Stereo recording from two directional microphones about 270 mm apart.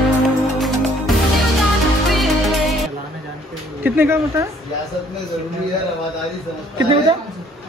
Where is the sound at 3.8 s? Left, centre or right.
Centre.